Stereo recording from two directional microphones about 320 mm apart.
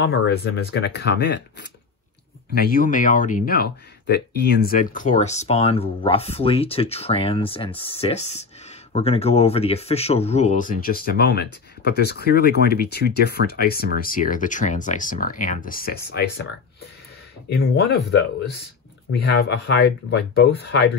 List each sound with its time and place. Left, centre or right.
0.0 s speech: left
17.5 s speech: left